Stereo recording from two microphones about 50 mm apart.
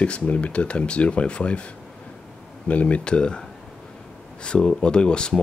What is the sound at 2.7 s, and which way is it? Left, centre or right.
Speech, left.